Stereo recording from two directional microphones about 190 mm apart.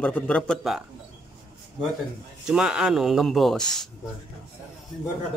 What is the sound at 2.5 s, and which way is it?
Speech, 5° right (ahead or behind).